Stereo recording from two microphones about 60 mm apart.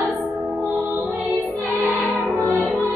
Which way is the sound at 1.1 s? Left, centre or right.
Right.